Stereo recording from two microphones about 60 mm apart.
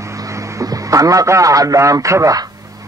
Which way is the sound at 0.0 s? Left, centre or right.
Right.